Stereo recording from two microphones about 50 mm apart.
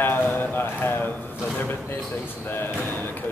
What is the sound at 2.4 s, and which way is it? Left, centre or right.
Speech, left.